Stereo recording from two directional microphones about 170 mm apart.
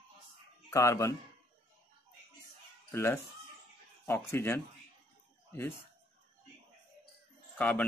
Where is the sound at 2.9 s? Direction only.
15° left (ahead or behind).